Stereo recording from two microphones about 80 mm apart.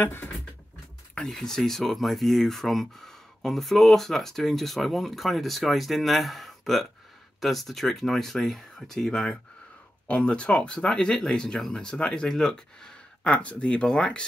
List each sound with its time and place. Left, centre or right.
0.0 s speech: left
1.1 s speech: centre